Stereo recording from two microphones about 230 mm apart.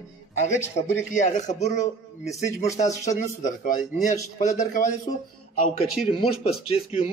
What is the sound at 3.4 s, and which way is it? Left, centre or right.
A man's voice, left.